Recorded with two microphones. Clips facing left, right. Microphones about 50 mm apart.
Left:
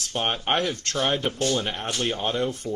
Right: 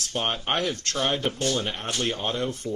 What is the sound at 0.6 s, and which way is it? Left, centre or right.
Speech, left.